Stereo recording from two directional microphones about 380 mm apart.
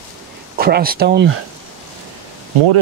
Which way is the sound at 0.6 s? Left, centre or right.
Right.